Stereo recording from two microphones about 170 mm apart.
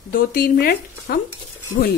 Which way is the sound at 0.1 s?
55° left (ahead or behind).